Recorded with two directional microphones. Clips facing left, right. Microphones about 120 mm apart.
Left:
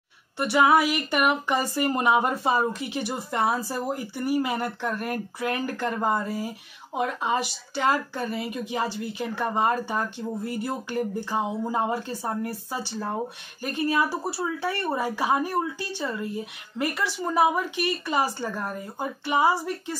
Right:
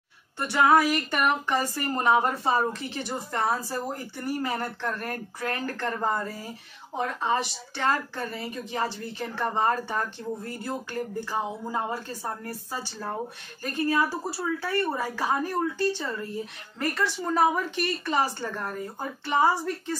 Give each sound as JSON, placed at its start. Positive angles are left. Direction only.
{"t": 0.4, "sound": "female singing", "side_deg": 15}
{"t": 11.2, "sound": "speech", "side_deg": 20}
{"t": 13.7, "sound": "female singing", "side_deg": 15}